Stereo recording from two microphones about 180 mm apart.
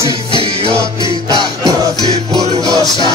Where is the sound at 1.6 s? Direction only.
20° right (ahead or behind).